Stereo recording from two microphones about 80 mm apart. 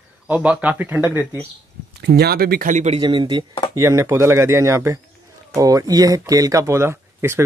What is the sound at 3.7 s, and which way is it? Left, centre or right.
Speech, right.